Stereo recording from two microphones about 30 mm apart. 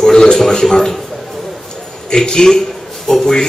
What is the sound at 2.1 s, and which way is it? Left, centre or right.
A man's voice, left.